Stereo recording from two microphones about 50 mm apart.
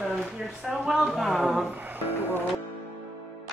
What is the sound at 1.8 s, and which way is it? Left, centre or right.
Music, right.